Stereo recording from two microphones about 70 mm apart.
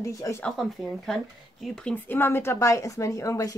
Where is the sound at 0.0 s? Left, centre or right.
Left.